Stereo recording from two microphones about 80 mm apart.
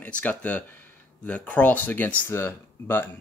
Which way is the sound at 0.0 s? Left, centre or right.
Centre.